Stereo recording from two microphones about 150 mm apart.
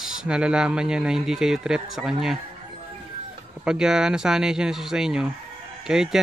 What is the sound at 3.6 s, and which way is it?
Speech, 5° right (ahead or behind).